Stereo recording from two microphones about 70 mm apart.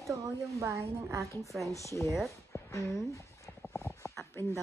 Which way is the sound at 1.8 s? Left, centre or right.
Left.